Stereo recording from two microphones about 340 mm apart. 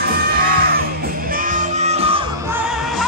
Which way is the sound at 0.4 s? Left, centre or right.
Right.